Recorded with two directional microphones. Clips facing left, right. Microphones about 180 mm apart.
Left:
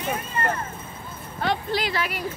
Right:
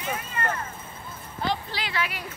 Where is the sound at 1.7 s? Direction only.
40° left (ahead or behind).